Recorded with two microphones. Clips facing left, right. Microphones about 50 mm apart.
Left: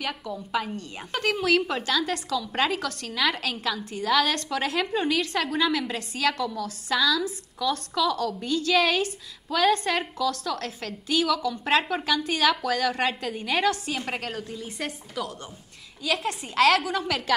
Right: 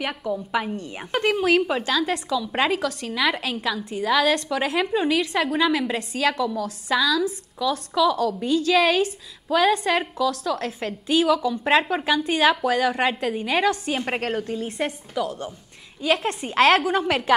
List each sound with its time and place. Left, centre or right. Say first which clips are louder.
0.0 s a woman's voice: right 5 dB; right
13.8 s a woman's voice: right 5 dB; right
15.1 s a woman's voice: right 7 dB; centre
16.0 s a woman's voice: right 5 dB; right